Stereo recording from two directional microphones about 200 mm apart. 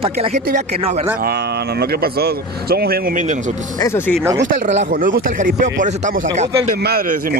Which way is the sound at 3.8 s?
15° left (ahead or behind).